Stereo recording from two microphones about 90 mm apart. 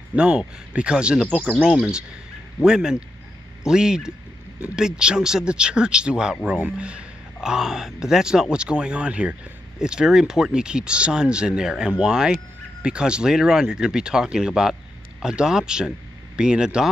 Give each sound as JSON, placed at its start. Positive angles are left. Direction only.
{"t": 0.1, "sound": "speech", "side_deg": -10}